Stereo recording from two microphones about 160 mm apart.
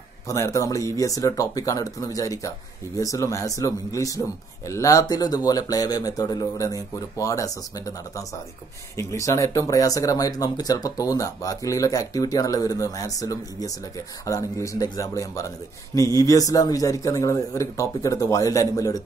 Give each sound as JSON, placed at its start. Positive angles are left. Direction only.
{"t": 0.3, "sound": "speech", "side_deg": 20}